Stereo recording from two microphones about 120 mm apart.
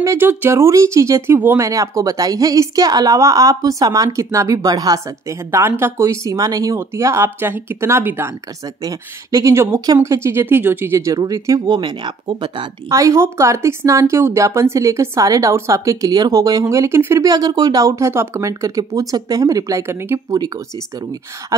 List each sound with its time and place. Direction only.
0.0 s a woman's voice: 20° right (ahead or behind)
5.5 s a woman's voice: 20° right (ahead or behind)
8.8 s a woman's voice: 30° right (ahead or behind)
12.9 s a woman's voice: 25° right (ahead or behind)